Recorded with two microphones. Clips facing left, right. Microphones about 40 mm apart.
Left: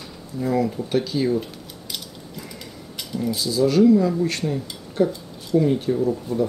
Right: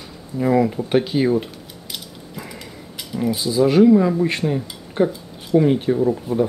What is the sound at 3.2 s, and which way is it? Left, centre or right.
Speech, right.